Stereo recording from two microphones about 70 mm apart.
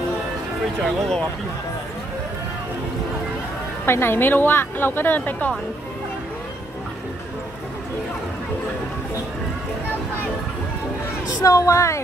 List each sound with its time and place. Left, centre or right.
0.8 s speech: centre
3.8 s speech: left
11.4 s a woman's voice: left